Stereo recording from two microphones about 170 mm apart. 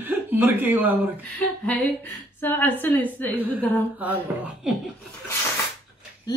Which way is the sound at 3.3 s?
10° right (ahead or behind).